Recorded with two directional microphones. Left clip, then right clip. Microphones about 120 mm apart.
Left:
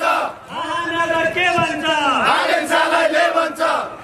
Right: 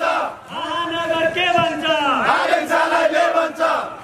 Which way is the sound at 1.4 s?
25° right (ahead or behind).